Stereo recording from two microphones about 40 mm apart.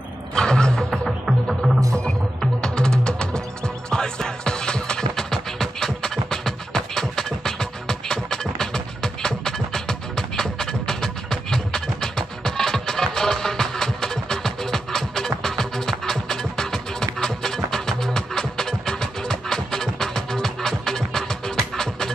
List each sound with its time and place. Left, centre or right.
0.3 s music: centre
0.8 s music: centre
2.6 s music: left